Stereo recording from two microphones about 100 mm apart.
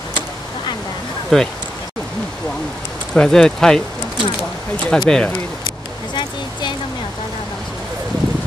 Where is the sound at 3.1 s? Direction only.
10° left (ahead or behind).